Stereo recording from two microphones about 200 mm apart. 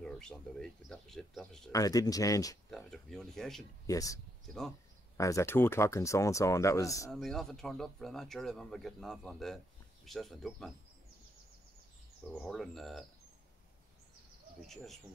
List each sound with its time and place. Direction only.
0.0 s speech: 5° left (ahead or behind)
1.7 s speech: 15° left (ahead or behind)
2.7 s speech: centre (ahead or behind)
3.8 s speech: 15° left (ahead or behind)
7.1 s speech: centre (ahead or behind)
12.3 s speech: centre (ahead or behind)
14.7 s speech: centre (ahead or behind)